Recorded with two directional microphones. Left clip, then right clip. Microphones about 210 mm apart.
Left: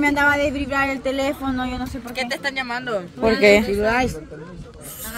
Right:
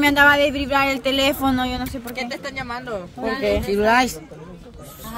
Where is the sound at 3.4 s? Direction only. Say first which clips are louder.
Left 8 dB; 40° left (ahead or behind).